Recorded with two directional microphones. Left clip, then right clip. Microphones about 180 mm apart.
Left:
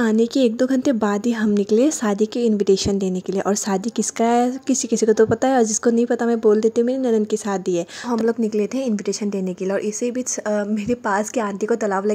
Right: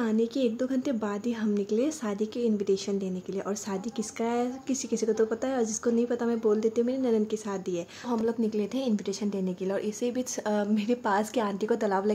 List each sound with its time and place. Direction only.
0.0 s speech: 50° left (ahead or behind)
8.3 s speech: 30° left (ahead or behind)
10.5 s speech: 25° left (ahead or behind)